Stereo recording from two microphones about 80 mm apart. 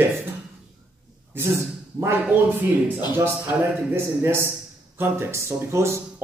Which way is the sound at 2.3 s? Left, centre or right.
Right.